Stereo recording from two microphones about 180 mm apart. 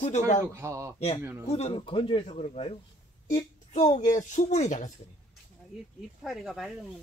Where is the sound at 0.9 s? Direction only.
35° left (ahead or behind).